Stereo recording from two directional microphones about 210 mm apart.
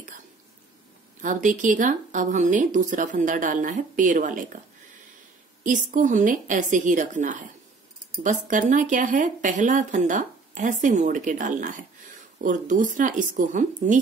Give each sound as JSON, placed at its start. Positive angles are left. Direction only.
{"t": 1.2, "sound": "speech", "side_deg": -40}
{"t": 5.6, "sound": "speech", "side_deg": -40}